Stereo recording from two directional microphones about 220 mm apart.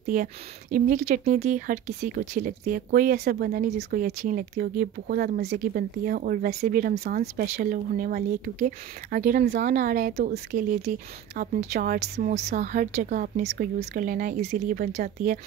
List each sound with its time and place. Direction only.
0.0 s speech: 40° right (ahead or behind)